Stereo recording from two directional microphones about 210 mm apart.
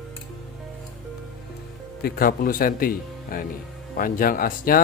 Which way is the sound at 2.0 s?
45° left (ahead or behind).